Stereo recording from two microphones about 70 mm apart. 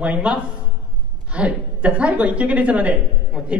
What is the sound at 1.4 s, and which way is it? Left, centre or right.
A woman's voice, centre.